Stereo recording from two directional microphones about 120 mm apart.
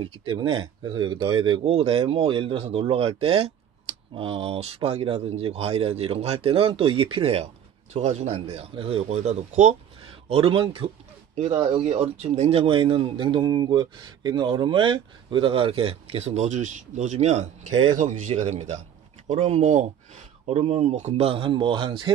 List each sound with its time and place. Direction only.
0.0 s speech: 45° right (ahead or behind)
1.7 s speech: 50° right (ahead or behind)
7.9 s speech: 65° right (ahead or behind)
8.4 s speech: 55° right (ahead or behind); by 9.8 s 70° right (ahead or behind)
10.2 s speech: 50° right (ahead or behind)
11.7 s speech: 60° right (ahead or behind)
17.9 s speech: 90° right; by 18.8 s 70° right (ahead or behind)
19.2 s speech: 60° right (ahead or behind); by 22.1 s 45° right (ahead or behind)